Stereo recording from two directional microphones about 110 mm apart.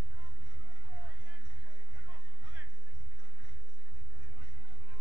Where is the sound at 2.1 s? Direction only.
15° right (ahead or behind).